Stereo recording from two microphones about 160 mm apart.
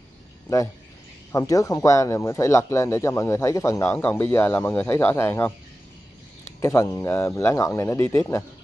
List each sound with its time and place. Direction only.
1.3 s speech: 20° left (ahead or behind)
6.6 s speech: 15° left (ahead or behind)